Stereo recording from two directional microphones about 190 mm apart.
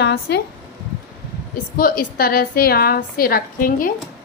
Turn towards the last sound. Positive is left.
turn(degrees=50)  # may be behind; listen again after turning